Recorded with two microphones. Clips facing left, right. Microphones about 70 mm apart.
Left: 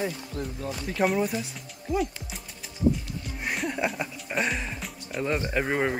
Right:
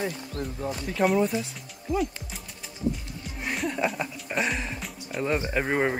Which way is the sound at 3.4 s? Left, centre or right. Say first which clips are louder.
Right 1 dB; centre.